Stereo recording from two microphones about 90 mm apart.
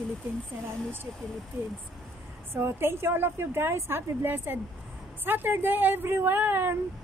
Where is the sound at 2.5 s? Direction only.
25° right (ahead or behind).